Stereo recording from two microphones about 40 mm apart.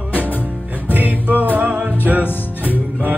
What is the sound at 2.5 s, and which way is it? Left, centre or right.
Music, right.